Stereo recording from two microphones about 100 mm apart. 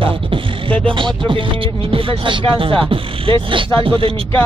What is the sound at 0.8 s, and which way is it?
Speech, 55° right (ahead or behind).